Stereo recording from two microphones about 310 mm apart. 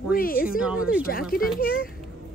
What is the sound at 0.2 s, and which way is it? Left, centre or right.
Speech, left.